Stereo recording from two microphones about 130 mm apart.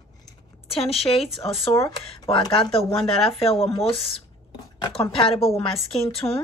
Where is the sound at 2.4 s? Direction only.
30° left (ahead or behind).